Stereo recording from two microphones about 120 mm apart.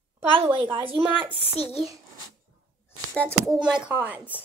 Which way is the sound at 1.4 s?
55° left (ahead or behind).